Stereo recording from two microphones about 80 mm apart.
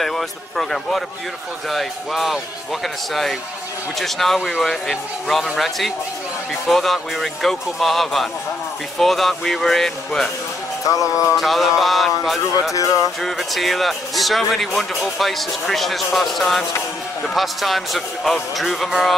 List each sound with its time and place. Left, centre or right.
0.0 s speech: centre
10.9 s music: left
11.3 s speech: centre
12.7 s music: left
13.2 s speech: centre